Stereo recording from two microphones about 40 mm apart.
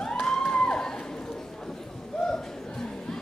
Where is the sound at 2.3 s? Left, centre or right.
Centre.